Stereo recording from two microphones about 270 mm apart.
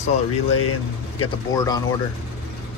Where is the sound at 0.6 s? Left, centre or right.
Left.